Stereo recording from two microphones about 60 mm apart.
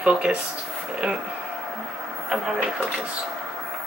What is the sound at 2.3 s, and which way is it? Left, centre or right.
Speech, centre.